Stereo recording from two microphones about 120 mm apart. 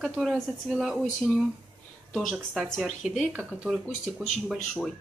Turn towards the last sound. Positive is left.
turn(degrees=0)  # may be behind; listen again after turning